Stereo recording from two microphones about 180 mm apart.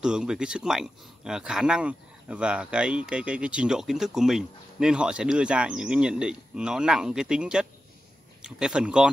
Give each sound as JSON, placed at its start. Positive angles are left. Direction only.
{"t": 0.0, "sound": "speech", "side_deg": -5}